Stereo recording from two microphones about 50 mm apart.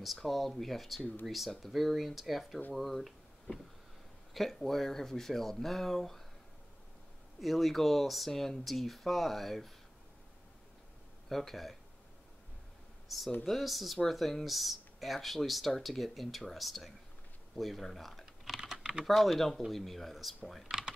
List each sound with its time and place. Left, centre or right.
0.0 s speech: centre
7.3 s speech: centre
11.2 s speech: centre
13.1 s speech: centre
18.2 s typing: centre
18.8 s typing: centre
19.0 s speech: centre
20.7 s typing: centre